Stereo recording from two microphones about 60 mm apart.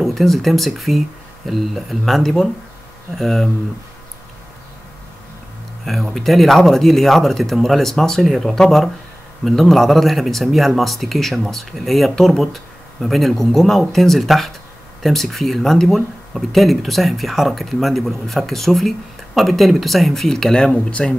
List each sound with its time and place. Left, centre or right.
0.0 s speech: centre
5.9 s speech: centre